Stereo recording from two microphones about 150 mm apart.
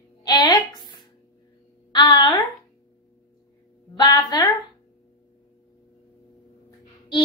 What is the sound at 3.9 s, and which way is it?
Music, 25° left (ahead or behind).